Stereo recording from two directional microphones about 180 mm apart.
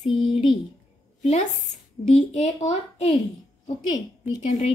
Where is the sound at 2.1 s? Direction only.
40° left (ahead or behind).